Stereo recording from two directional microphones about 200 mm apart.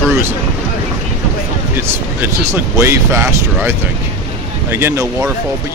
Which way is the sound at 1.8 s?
10° right (ahead or behind).